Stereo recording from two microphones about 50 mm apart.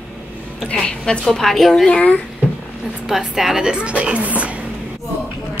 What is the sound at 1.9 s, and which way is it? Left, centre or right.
Speech, left.